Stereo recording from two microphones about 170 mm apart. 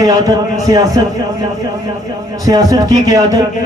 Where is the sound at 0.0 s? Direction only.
20° right (ahead or behind).